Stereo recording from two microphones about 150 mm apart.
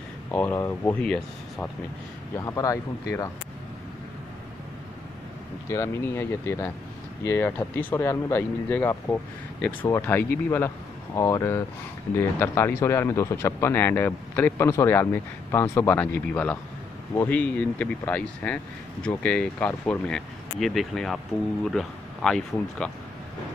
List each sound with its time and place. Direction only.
0.3 s speech: 10° left (ahead or behind)
2.3 s speech: 20° left (ahead or behind)
5.7 s speech: 15° left (ahead or behind)